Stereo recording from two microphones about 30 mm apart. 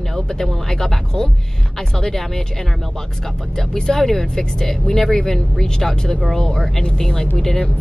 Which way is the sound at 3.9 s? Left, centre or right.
Centre.